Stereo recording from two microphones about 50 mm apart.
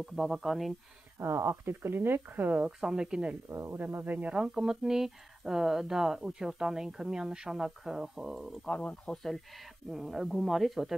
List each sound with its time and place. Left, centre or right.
0.0 s speech: centre
1.2 s speech: right
2.8 s speech: centre
3.4 s speech: right
4.3 s speech: centre
8.6 s speech: left
9.1 s speech: centre